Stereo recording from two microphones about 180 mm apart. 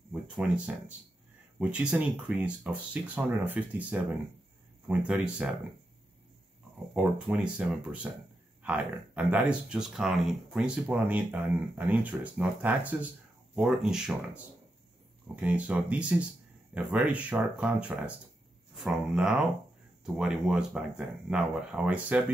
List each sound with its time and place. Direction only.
0.1 s speech: 5° right (ahead or behind)
6.9 s speech: 5° right (ahead or behind)